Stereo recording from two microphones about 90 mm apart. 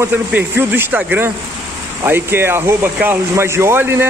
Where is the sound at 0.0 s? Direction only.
20° right (ahead or behind).